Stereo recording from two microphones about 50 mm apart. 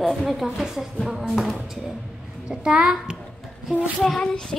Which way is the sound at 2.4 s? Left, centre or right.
Centre.